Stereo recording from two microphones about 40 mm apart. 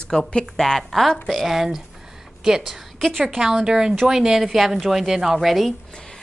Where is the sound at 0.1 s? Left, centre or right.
Centre.